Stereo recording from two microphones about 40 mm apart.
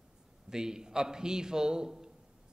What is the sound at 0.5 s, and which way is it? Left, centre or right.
A man's voice, centre.